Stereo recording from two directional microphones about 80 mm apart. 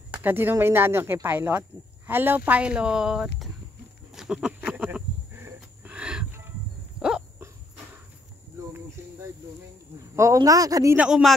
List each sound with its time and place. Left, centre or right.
0.1 s speech: right
5.3 s wild animals: right
5.9 s a sound: centre
10.1 s a man's voice: right
11.0 s speech: centre